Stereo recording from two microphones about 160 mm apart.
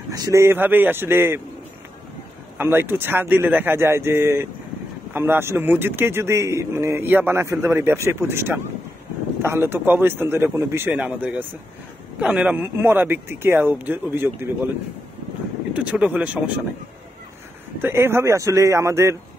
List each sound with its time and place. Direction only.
0.1 s speech: 20° right (ahead or behind)
2.5 s speech: 15° right (ahead or behind)
15.7 s speech: 10° right (ahead or behind)
17.7 s speech: 15° right (ahead or behind)